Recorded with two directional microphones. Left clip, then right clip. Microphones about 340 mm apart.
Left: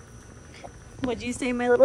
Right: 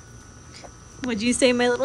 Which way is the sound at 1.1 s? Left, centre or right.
Centre.